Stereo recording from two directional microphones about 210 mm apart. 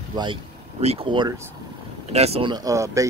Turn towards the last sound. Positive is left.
turn(degrees=-15)  # may be behind; listen again after turning